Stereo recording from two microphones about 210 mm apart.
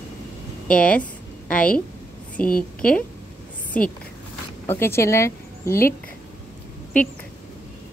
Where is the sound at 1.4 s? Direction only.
40° left (ahead or behind).